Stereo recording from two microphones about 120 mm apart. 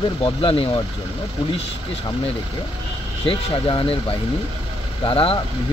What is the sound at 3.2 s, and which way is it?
Speech, 45° left (ahead or behind).